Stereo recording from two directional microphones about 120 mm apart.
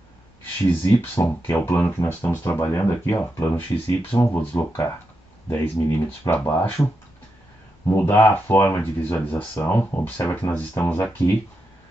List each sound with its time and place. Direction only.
0.4 s speech: 15° left (ahead or behind)